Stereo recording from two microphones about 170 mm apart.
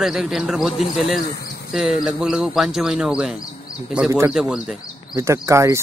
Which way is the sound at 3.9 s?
15° right (ahead or behind).